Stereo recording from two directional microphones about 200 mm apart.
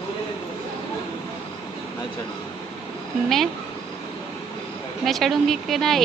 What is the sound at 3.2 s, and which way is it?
Speech, centre (ahead or behind).